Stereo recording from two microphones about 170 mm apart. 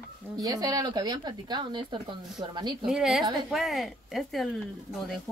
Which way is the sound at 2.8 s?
5° right (ahead or behind).